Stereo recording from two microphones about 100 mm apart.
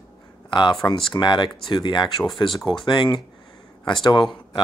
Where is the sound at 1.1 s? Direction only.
50° left (ahead or behind).